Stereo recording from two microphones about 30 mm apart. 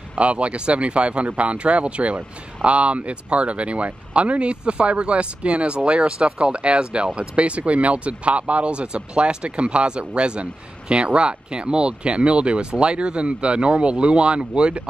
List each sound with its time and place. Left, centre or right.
0.2 s speech: right